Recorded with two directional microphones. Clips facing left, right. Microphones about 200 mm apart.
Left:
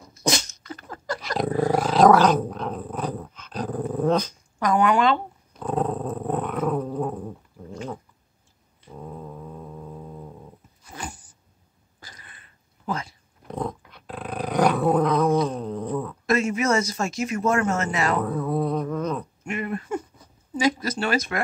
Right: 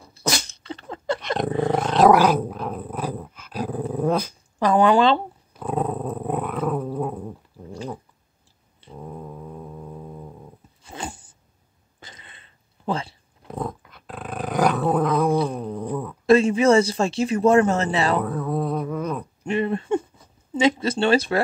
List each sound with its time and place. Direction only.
0.7 s a sound: 25° right (ahead or behind)
1.7 s roar: centre (ahead or behind)
2.0 s dog: 10° right (ahead or behind)
4.6 s speech: 30° right (ahead or behind)
5.5 s dog: 5° right (ahead or behind)
9.0 s foghorn: 10° right (ahead or behind)
10.8 s a sound: 25° right (ahead or behind)
13.5 s dog: 5° right (ahead or behind)
15.4 s cat: 10° right (ahead or behind)
16.3 s speech: 30° right (ahead or behind)
18.2 s a sound: centre (ahead or behind)
19.4 s a sound: 30° right (ahead or behind)